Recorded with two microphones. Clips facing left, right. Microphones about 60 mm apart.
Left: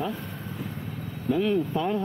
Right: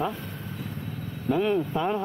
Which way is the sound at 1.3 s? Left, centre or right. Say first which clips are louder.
Even; centre.